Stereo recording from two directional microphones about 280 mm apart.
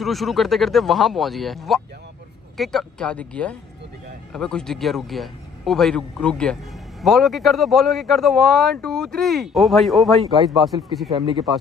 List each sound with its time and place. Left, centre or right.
0.0 s speech: centre
11.1 s speech: centre